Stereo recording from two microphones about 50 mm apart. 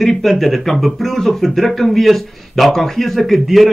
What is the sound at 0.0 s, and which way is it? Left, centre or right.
Speech, centre.